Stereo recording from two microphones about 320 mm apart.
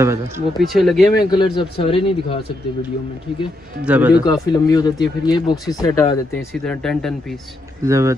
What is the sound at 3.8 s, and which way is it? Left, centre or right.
Speech, centre.